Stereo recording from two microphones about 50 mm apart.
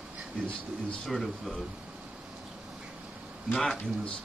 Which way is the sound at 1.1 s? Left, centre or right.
Centre.